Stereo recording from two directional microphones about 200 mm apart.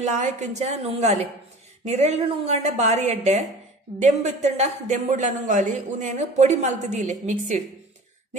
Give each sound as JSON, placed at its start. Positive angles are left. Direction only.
{"t": 0.2, "sound": "speech", "side_deg": -35}